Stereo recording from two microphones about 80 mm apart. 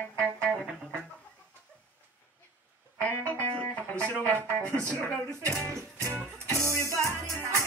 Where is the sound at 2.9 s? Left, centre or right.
Left.